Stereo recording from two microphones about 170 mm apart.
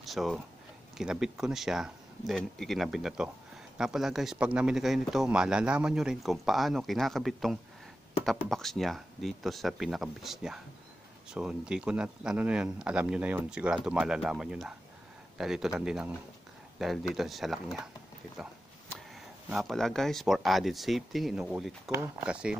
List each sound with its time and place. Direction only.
0.0 s a man's voice: centre (ahead or behind)
19.5 s a man's voice: centre (ahead or behind)